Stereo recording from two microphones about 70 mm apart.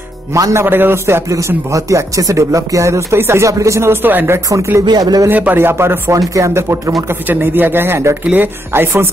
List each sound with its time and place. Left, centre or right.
0.3 s speech: right
0.7 s speech: right
1.3 s speech: right
4.5 s speech: right
4.8 s speech: right
5.3 s speech: right
6.1 s speech: right
7.2 s speech: right